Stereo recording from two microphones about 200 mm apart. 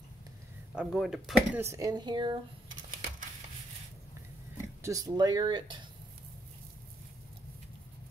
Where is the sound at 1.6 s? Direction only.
15° right (ahead or behind).